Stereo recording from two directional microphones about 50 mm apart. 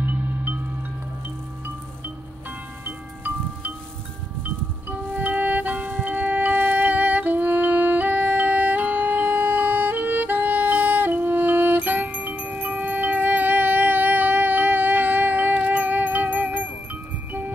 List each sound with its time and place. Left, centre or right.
0.0 s music: right
2.8 s chime: right
4.4 s music: right